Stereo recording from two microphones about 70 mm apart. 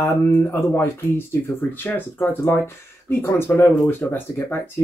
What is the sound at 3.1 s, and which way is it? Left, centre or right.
Speech, left.